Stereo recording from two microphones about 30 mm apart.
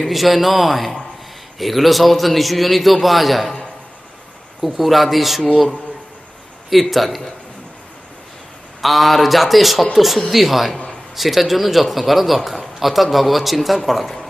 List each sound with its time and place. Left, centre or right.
0.0 s a man's voice: centre
4.6 s a man's voice: centre
6.7 s a man's voice: centre
8.8 s a man's voice: centre